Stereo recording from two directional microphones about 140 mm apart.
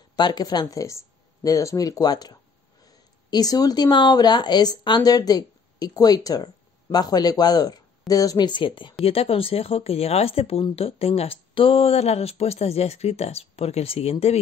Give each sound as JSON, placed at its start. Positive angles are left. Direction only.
{"t": 0.1, "sound": "speech", "side_deg": 30}